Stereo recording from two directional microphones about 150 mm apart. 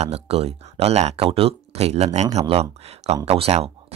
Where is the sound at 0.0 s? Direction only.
45° right (ahead or behind).